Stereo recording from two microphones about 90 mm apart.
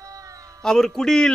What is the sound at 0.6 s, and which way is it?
Speech, 5° left (ahead or behind).